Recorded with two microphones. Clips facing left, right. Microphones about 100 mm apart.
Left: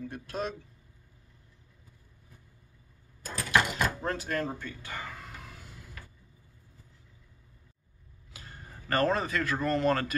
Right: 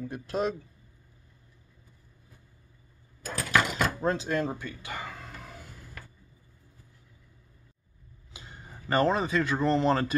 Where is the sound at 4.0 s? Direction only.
20° right (ahead or behind).